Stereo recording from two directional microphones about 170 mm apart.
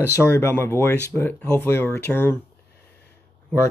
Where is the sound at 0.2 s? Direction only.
15° left (ahead or behind).